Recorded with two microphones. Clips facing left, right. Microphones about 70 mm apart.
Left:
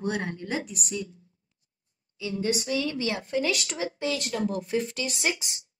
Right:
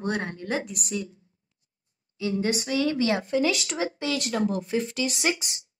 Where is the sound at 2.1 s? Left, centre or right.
Right.